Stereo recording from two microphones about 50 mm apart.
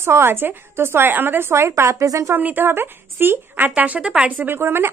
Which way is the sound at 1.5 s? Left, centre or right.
Right.